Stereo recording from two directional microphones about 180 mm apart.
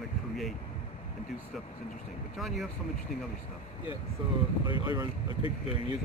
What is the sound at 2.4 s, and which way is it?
Speech, centre (ahead or behind).